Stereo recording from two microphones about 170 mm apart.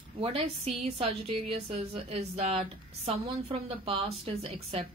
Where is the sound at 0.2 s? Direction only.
35° right (ahead or behind).